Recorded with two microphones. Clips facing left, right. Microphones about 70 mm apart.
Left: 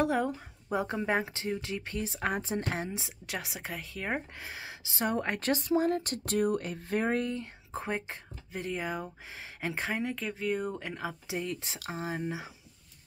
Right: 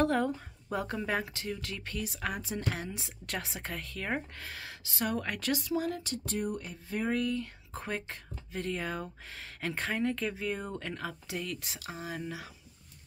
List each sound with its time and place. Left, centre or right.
0.0 s speech: centre
3.3 s speech: centre; by 6.2 s left
6.2 s speech: left
7.1 s speech: left